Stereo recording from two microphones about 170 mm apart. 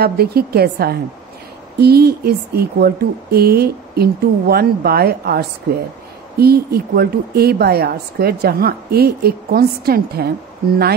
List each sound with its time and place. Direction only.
0.0 s a woman's voice: 65° right (ahead or behind)